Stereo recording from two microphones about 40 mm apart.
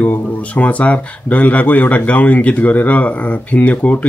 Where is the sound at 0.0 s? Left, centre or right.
Left.